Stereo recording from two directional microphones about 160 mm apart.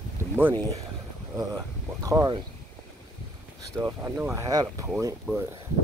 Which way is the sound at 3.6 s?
20° right (ahead or behind).